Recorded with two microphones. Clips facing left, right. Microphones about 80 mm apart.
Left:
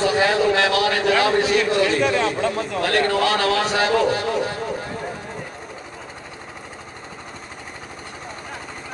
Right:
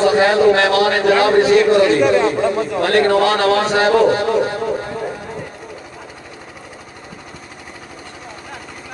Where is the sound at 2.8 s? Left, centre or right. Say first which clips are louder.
Right 6 dB; right.